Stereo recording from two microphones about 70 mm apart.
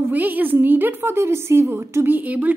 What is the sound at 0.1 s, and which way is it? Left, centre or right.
A woman's voice, right.